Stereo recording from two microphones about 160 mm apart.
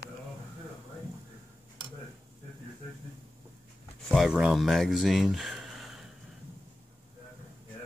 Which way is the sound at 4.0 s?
Centre (ahead or behind).